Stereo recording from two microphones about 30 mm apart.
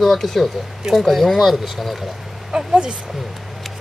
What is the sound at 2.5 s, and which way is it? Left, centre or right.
Speech, right.